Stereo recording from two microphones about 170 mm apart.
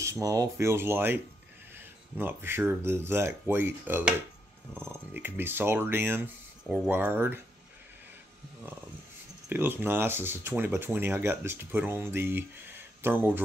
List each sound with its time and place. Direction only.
0.0 s speech: 20° right (ahead or behind)
9.5 s speech: 10° right (ahead or behind)